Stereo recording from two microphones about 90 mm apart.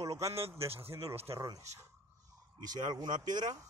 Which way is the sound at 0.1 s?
35° right (ahead or behind).